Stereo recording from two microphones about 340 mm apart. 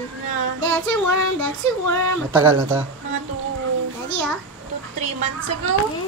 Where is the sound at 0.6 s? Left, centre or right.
Right.